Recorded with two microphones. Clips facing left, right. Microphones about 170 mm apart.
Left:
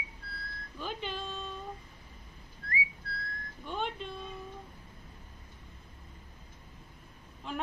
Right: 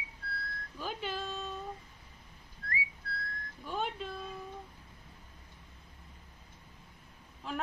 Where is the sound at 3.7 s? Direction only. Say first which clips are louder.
Even; 5° right (ahead or behind).